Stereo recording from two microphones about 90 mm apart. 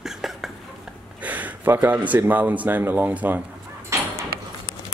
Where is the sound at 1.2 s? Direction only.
15° right (ahead or behind).